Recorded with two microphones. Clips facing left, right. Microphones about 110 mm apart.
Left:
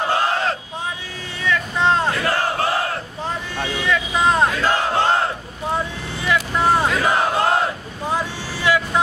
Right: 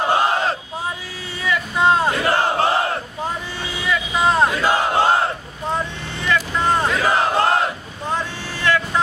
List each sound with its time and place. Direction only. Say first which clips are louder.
0.1 s a sound: right 2 dB; 15° right (ahead or behind)
1.4 s vehicle: right 1 dB; 10° right (ahead or behind)
2.2 s crowd: right 3 dB; 25° right (ahead or behind)
3.9 s vehicle: even; centre (ahead or behind)
4.5 s battle cry: right 1 dB; 10° right (ahead or behind)
6.2 s crowd: left 1 dB; 5° left (ahead or behind)
8.1 s vehicle: left 1 dB; 10° left (ahead or behind)